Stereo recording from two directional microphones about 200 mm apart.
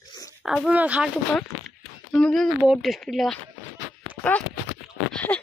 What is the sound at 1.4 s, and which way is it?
Speech, 5° left (ahead or behind).